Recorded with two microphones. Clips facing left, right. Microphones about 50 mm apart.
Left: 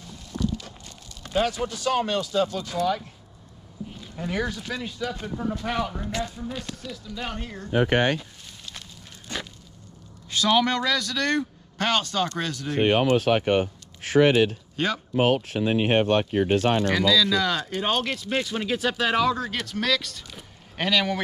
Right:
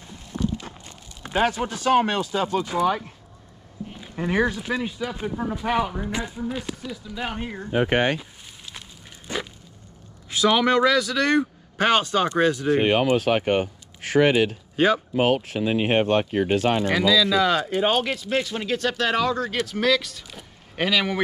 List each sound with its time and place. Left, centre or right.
0.0 s a sound: right
1.2 s speech: right
4.1 s speech: right
7.7 s speech: right
9.3 s a sound: centre
10.3 s speech: centre
13.3 s speech: right
15.7 s speech: right
16.8 s speech: centre